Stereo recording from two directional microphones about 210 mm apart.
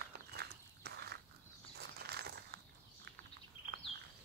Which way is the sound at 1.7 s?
50° right (ahead or behind).